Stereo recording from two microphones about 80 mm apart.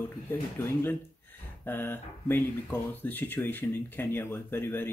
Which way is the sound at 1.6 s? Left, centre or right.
Left.